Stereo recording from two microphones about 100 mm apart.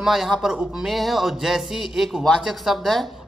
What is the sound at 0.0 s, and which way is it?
A man's voice, 5° right (ahead or behind).